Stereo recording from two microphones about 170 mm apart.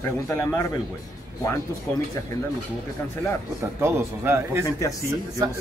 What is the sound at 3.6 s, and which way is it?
Speech, 15° right (ahead or behind).